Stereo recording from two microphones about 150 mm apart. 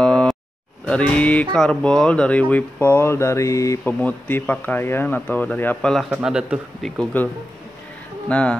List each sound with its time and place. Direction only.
0.0 s a sound: 5° left (ahead or behind)
0.8 s speech: 5° left (ahead or behind)
4.0 s a man's voice: 10° left (ahead or behind)
8.3 s speech: 10° left (ahead or behind)